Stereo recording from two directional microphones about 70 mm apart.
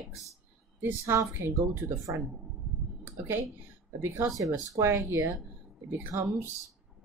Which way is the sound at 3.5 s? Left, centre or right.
Right.